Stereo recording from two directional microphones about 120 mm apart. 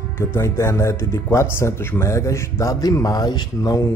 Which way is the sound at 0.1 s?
20° left (ahead or behind).